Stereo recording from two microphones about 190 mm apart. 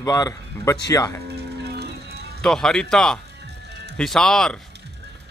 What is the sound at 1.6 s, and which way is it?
Music, 60° right (ahead or behind).